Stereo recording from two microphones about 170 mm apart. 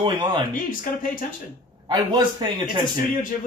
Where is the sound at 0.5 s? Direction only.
55° left (ahead or behind).